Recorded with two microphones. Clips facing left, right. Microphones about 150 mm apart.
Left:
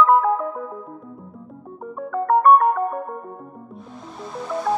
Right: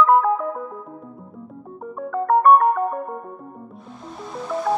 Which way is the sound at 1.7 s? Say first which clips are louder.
Even; centre (ahead or behind).